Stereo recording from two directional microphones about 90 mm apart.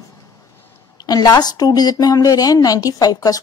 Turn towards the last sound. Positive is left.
turn(degrees=45)  # may be behind; listen again after turning